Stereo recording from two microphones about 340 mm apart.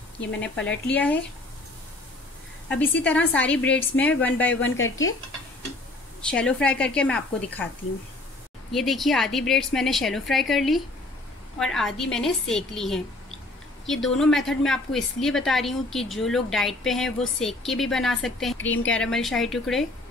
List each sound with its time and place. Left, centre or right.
0.4 s a woman's voice: centre
2.7 s a woman's voice: centre
6.2 s a woman's voice: centre
8.7 s a woman's voice: centre
18.6 s a woman's voice: left
18.9 s a woman's voice: centre